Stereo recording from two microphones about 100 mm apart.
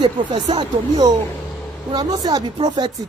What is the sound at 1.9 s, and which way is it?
Speech, 45° right (ahead or behind).